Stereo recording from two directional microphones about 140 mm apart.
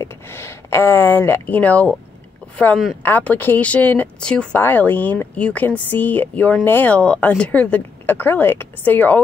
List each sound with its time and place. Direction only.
0.0 s speech: 20° left (ahead or behind)